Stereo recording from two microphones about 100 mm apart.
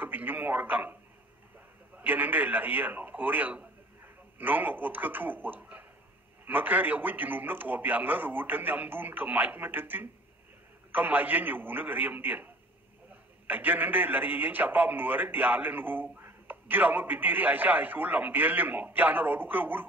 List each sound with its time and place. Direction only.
0.0 s a man's voice: 20° right (ahead or behind)
2.0 s a man's voice: 15° right (ahead or behind)
13.5 s a man's voice: 20° right (ahead or behind)